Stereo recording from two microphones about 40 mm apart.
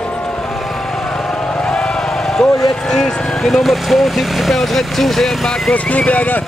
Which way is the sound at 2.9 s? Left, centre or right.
Centre.